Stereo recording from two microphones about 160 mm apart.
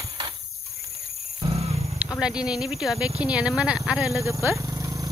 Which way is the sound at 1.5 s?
40° right (ahead or behind).